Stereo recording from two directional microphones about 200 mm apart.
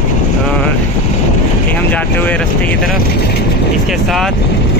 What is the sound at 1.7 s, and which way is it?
Speech, 10° left (ahead or behind).